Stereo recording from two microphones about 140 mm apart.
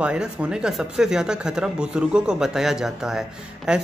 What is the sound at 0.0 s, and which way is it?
Speech, 5° right (ahead or behind).